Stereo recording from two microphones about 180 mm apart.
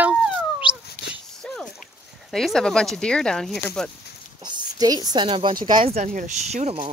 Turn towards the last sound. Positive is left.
turn(degrees=-40)  # may be behind; listen again after turning